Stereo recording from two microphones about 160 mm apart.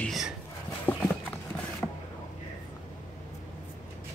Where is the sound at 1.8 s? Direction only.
5° left (ahead or behind).